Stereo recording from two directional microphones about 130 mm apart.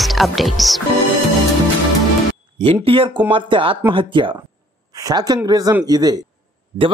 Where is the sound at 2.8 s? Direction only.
45° right (ahead or behind).